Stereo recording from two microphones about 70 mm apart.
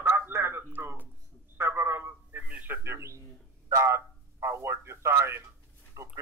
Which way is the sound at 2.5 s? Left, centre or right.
Right.